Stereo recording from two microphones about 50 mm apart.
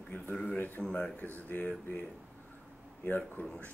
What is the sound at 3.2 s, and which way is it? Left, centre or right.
Speech, left.